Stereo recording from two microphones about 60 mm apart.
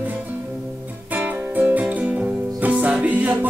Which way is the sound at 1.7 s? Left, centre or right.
Right.